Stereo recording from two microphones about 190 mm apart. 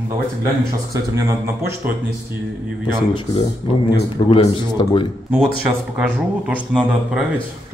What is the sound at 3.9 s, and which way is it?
Speech, 30° left (ahead or behind).